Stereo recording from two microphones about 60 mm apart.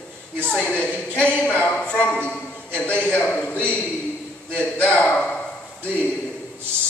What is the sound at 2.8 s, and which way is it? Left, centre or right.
A man's voice, left.